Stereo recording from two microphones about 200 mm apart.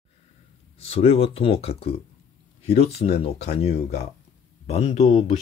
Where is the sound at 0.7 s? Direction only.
30° left (ahead or behind).